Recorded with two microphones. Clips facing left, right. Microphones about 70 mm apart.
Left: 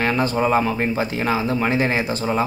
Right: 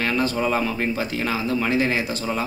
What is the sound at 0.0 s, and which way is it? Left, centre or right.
Speech, left.